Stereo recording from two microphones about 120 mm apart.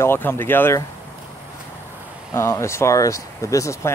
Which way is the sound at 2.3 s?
25° left (ahead or behind).